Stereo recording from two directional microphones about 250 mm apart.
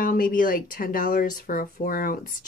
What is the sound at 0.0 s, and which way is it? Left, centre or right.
Speech, left.